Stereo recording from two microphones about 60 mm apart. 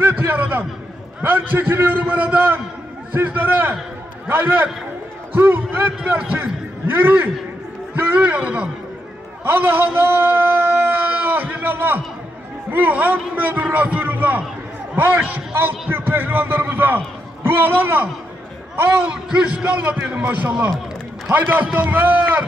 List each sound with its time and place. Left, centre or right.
0.4 s a man's voice: right
9.4 s a man's voice: right
19.0 s a man's voice: right